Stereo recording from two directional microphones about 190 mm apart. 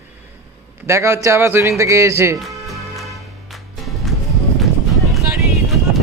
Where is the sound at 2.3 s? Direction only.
Centre (ahead or behind).